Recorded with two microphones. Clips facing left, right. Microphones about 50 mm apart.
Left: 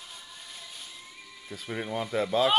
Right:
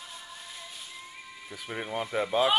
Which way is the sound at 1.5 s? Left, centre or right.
Centre.